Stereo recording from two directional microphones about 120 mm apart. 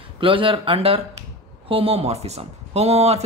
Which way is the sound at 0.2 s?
45° right (ahead or behind).